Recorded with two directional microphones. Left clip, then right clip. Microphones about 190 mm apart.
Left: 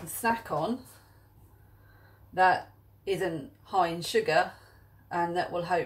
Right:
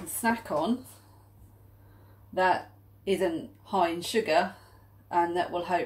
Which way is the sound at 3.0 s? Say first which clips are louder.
Right 3 dB; 35° right (ahead or behind).